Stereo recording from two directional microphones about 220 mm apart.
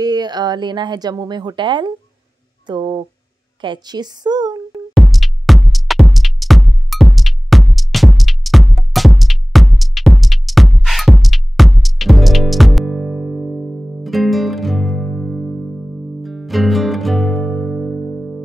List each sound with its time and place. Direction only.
0.0 s a woman's voice: 20° right (ahead or behind)
4.9 s music: centre (ahead or behind)